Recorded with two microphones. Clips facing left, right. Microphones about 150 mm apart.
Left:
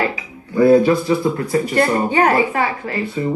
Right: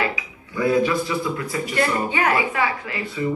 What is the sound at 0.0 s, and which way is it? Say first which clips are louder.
Speech: left 4 dB; 45° left (ahead or behind).